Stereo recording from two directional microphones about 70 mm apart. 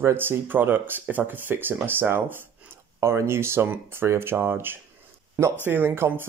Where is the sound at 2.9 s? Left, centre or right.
Right.